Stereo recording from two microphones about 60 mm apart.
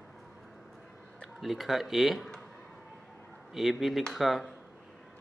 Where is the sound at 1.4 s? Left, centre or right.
Centre.